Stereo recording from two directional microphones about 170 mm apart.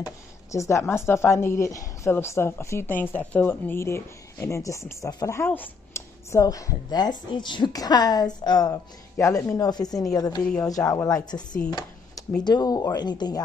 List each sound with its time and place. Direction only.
0.0 s speech: 20° left (ahead or behind)
10.4 s speech: 10° left (ahead or behind)
10.9 s speech: 20° left (ahead or behind)
12.4 s speech: 25° left (ahead or behind)